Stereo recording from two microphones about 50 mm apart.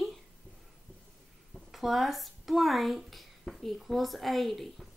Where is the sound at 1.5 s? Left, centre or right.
Centre.